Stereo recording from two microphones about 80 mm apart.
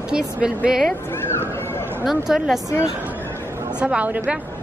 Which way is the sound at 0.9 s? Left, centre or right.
Left.